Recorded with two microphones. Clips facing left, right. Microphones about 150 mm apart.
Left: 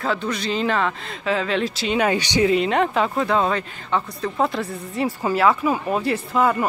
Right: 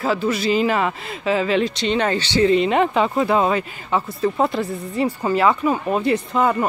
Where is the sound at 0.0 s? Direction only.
5° right (ahead or behind); by 2.5 s 15° left (ahead or behind).